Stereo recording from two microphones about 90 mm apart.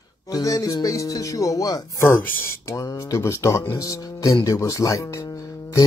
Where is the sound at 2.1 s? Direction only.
25° left (ahead or behind).